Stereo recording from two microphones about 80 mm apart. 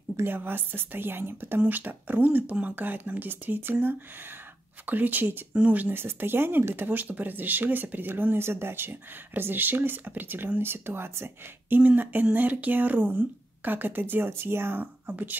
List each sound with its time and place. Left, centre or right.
0.2 s speech: right